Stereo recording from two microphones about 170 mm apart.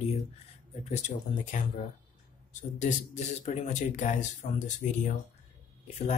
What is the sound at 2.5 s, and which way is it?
Speech, 45° left (ahead or behind).